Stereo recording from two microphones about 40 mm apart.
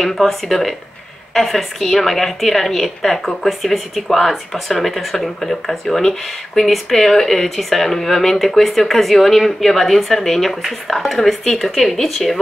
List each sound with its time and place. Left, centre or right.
0.0 s a woman's voice: centre